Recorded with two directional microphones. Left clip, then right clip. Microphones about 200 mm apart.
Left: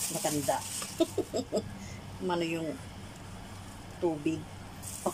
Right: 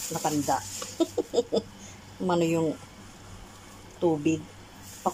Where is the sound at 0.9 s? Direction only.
5° right (ahead or behind).